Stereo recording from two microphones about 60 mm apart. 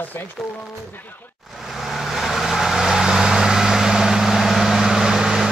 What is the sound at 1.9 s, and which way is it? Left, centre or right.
Vehicle, centre.